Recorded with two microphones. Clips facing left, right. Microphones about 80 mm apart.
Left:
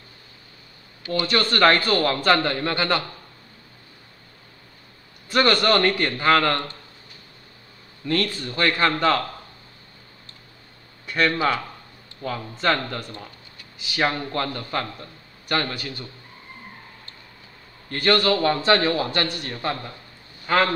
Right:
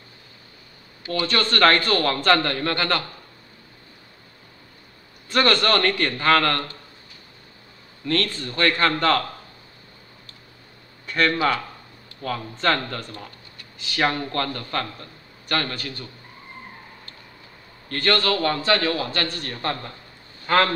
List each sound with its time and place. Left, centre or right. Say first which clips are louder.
1.2 s a man's voice: even; centre
5.3 s a man's voice: left 1 dB; centre
8.0 s a man's voice: even; centre
11.1 s a man's voice: even; centre
17.8 s a man's voice: left 2 dB; centre